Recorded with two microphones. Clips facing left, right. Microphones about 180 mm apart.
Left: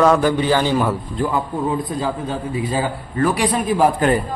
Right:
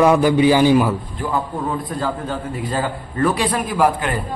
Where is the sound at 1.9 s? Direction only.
10° left (ahead or behind).